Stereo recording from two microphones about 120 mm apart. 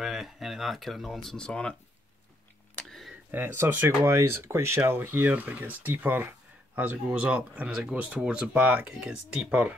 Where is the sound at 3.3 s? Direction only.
20° right (ahead or behind).